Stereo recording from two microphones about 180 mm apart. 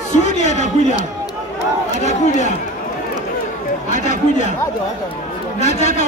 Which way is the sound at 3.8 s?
40° left (ahead or behind).